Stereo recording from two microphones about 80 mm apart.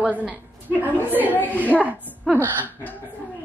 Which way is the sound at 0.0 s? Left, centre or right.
Centre.